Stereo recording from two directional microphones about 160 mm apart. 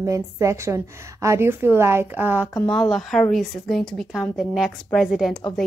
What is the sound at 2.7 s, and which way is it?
A woman's voice, centre (ahead or behind).